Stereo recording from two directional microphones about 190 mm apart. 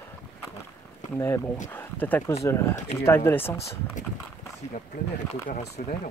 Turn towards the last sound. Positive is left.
turn(degrees=40)  # may be behind; listen again after turning